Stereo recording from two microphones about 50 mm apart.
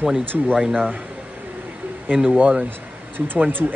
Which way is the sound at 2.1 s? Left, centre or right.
Right.